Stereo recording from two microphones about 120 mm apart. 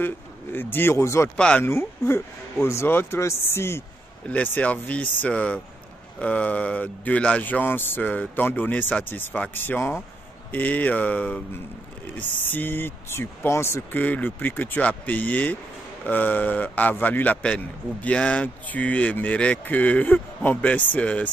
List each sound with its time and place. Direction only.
0.0 s speech: 15° left (ahead or behind)
1.3 s speech: 10° left (ahead or behind)
1.6 s speech: 20° left (ahead or behind)